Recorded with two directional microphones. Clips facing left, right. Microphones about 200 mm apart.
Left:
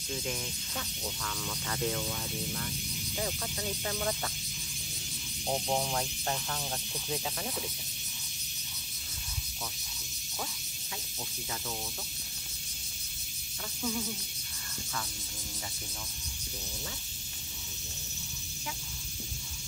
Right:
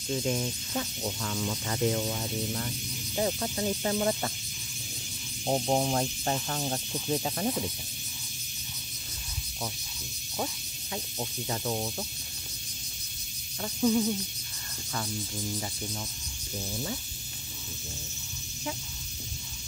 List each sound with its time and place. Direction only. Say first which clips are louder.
0.3 s speech: right 8 dB; 30° right (ahead or behind)
5.5 s speech: right 5 dB; 30° right (ahead or behind)
11.1 s speech: right 8 dB; 45° right (ahead or behind)
13.7 s speech: right 10 dB; 40° right (ahead or behind)